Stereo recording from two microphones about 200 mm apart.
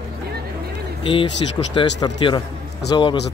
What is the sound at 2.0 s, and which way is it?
A man's voice, 20° left (ahead or behind).